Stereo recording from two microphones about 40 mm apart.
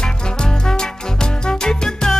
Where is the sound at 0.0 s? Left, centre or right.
Centre.